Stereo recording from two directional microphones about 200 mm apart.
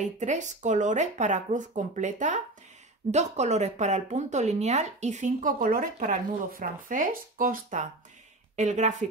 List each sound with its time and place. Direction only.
0.0 s speech: 35° right (ahead or behind)